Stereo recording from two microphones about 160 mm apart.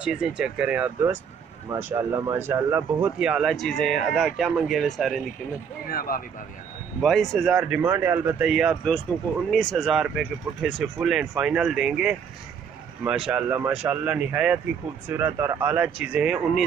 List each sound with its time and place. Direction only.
0.0 s speech: 5° right (ahead or behind)
5.9 s speech: 65° left (ahead or behind)
7.0 s speech: centre (ahead or behind)